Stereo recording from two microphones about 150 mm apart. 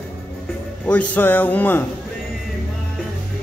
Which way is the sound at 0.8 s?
10° left (ahead or behind).